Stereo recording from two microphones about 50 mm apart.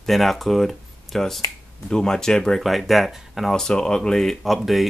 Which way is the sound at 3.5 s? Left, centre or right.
Centre.